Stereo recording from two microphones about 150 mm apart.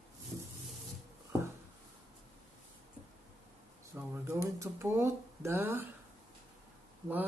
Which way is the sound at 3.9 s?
15° right (ahead or behind).